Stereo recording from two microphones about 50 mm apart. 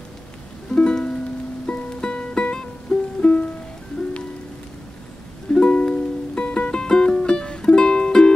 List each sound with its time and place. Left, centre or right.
0.7 s music: centre
3.2 s music: left
5.5 s music: centre